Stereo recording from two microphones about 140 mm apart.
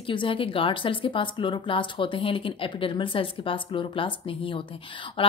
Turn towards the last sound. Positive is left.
turn(degrees=40)  # may be behind; listen again after turning